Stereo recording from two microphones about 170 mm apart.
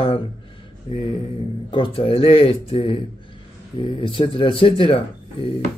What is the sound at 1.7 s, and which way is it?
Speech, 30° left (ahead or behind).